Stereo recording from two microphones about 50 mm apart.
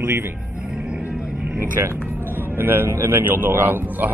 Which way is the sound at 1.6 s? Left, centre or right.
Right.